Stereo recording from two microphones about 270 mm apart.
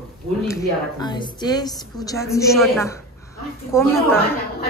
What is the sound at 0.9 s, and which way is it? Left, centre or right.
A woman's voice, centre.